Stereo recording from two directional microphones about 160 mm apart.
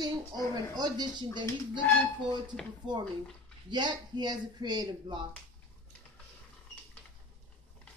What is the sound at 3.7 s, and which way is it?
A woman's voice, 30° right (ahead or behind).